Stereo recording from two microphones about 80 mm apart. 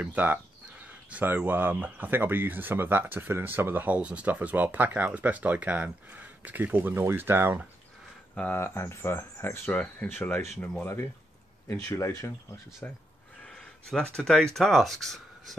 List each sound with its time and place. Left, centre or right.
0.0 s speech: right
8.5 s speech: left
11.6 s speech: left
12.8 s speech: left
13.5 s a sound: centre
14.1 s speech: centre